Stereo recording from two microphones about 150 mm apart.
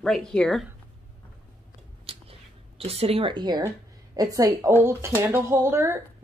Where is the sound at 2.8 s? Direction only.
40° right (ahead or behind).